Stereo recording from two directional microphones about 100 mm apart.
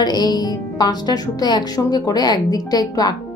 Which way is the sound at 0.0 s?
45° left (ahead or behind).